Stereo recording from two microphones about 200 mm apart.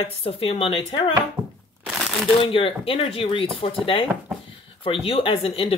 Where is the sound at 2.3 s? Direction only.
25° left (ahead or behind).